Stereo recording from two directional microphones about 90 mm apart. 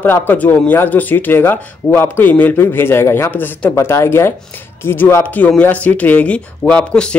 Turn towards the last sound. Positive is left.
turn(degrees=10)  # may be behind; listen again after turning